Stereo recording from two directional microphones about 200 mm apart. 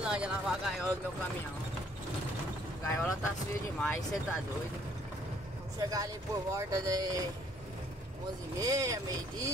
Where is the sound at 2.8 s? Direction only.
15° left (ahead or behind).